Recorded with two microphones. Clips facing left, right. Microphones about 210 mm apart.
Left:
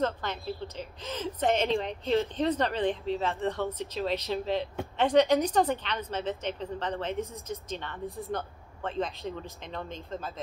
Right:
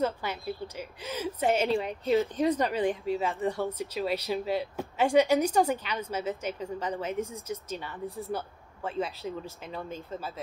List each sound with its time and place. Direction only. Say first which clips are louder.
0.0 s a woman's voice: even; 10° right (ahead or behind)